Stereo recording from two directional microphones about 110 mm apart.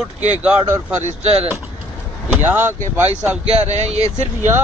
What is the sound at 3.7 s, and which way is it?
Speech, 85° right.